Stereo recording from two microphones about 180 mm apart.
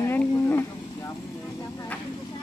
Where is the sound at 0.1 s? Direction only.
10° left (ahead or behind).